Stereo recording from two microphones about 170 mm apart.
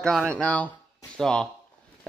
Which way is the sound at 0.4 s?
10° left (ahead or behind).